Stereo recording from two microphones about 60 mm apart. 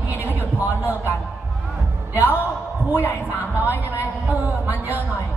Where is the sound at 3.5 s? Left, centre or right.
Right.